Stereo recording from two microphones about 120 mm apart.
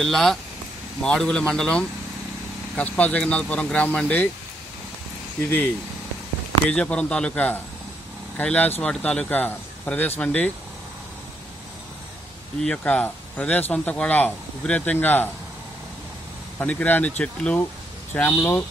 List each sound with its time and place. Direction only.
0.0 s speech: 5° left (ahead or behind)
6.7 s speech: 10° left (ahead or behind)
12.6 s speech: 10° left (ahead or behind)
16.5 s speech: 15° left (ahead or behind)